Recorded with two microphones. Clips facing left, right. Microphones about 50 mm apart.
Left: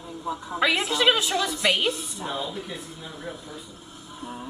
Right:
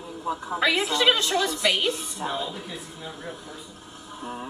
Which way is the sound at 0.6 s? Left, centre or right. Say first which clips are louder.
Left 1 dB; centre.